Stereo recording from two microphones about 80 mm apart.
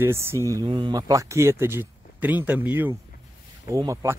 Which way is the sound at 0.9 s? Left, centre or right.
Right.